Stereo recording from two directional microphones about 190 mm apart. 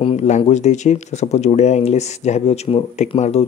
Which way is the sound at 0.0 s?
35° left (ahead or behind).